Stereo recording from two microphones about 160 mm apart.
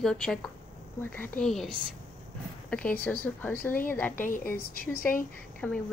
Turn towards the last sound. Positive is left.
turn(degrees=10)  # may be behind; listen again after turning